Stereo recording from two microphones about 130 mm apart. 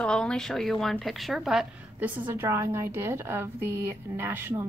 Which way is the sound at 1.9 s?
15° right (ahead or behind).